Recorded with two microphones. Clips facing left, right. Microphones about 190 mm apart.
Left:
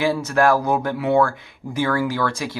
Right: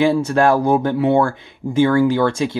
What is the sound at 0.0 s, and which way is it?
Speech, 25° right (ahead or behind).